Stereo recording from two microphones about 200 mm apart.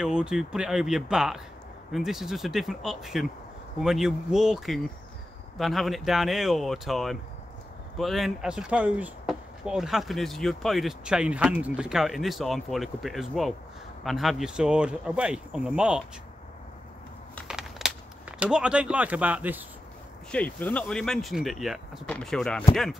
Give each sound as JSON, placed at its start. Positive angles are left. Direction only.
{"t": 0.0, "sound": "speech", "side_deg": -5}
{"t": 17.4, "sound": "a sound", "side_deg": 0}
{"t": 18.4, "sound": "speech", "side_deg": -5}
{"t": 20.2, "sound": "speech", "side_deg": 5}